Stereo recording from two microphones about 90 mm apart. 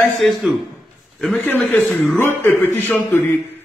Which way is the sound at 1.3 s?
15° left (ahead or behind).